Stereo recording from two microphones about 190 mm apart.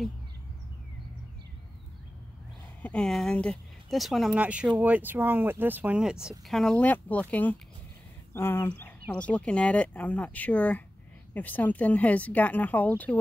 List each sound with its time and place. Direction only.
2.8 s speech: 5° left (ahead or behind)